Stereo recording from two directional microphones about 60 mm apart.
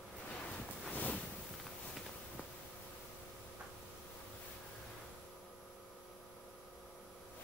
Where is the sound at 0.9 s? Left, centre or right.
Left.